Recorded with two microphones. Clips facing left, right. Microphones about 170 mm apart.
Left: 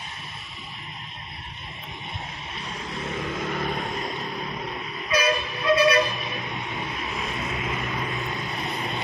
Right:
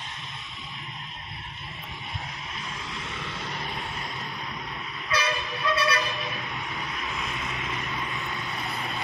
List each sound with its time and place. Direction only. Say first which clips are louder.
2.9 s vehicle: left 7 dB; 40° left (ahead or behind)
4.0 s vehicle: left 5 dB; 20° left (ahead or behind)
8.1 s vehicle: left 4 dB; 20° left (ahead or behind)